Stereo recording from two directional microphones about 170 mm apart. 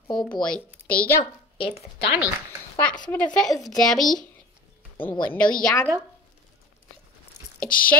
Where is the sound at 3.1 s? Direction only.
5° left (ahead or behind).